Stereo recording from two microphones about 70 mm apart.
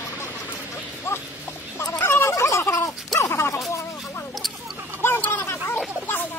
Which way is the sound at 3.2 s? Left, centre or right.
Left.